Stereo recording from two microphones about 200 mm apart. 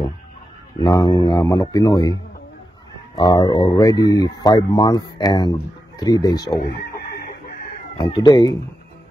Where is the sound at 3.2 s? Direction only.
20° left (ahead or behind).